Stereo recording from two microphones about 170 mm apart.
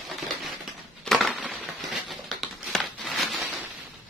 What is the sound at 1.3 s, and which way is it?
Crushing, 5° right (ahead or behind).